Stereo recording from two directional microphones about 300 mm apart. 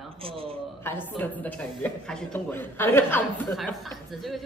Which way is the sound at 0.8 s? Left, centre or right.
Centre.